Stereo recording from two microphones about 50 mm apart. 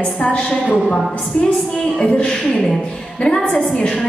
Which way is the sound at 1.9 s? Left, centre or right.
Centre.